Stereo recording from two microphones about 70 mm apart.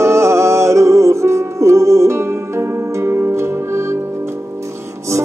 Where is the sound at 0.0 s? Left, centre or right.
Right.